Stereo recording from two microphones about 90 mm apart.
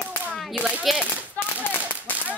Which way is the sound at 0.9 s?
Centre (ahead or behind).